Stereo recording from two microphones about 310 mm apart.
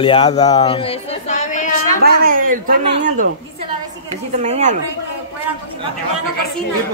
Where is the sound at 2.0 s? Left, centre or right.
Right.